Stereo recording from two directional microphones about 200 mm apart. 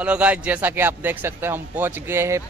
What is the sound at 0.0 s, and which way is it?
A man's voice, 5° right (ahead or behind).